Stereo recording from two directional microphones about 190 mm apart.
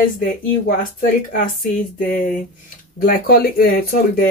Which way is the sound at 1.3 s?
45° left (ahead or behind).